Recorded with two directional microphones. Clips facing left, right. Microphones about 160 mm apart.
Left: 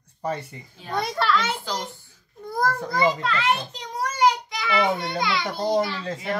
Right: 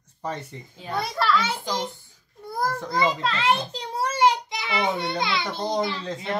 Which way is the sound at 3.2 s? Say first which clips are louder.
Right 1 dB; 25° right (ahead or behind).